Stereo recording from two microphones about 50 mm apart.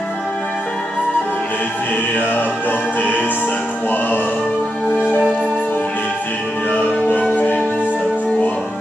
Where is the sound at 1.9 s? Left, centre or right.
Left.